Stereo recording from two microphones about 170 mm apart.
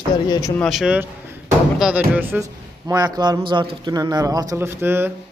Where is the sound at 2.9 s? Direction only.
25° right (ahead or behind).